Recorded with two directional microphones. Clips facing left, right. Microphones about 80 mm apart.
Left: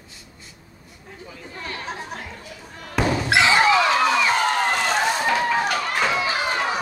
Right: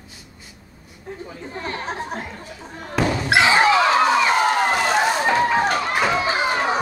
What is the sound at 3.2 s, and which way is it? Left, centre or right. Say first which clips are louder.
Slam: right 2 dB; centre.